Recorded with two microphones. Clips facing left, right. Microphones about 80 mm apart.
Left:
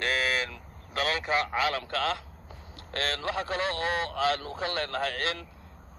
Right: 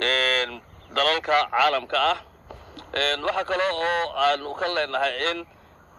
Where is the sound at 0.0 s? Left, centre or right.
Right.